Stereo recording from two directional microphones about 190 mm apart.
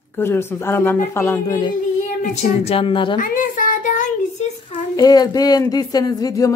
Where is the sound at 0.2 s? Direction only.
10° left (ahead or behind).